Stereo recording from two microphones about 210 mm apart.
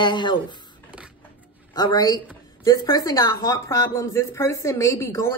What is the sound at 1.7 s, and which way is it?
A woman's voice, 20° left (ahead or behind).